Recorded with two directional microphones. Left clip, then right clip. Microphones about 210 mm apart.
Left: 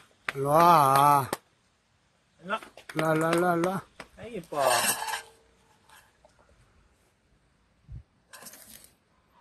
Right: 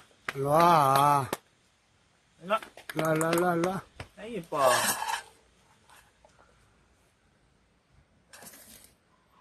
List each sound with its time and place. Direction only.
0.2 s speech: 15° left (ahead or behind)
3.0 s speech: 15° left (ahead or behind)
4.6 s dishes: 30° left (ahead or behind)